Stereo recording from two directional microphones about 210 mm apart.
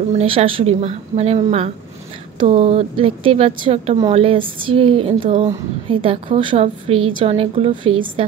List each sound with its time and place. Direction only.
0.1 s a woman's voice: 30° right (ahead or behind)